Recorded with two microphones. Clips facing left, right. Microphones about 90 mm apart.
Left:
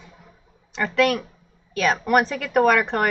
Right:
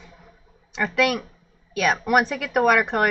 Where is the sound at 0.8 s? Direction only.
5° right (ahead or behind).